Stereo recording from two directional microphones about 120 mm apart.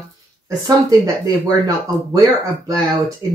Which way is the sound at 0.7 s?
30° right (ahead or behind).